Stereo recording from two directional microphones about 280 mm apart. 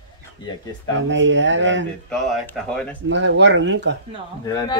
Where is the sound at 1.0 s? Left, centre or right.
Right.